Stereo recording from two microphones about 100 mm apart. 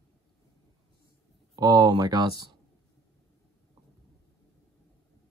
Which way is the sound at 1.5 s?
40° right (ahead or behind).